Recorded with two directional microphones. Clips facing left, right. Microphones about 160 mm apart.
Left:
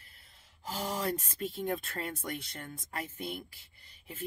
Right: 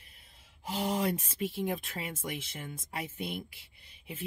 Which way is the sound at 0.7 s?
15° right (ahead or behind).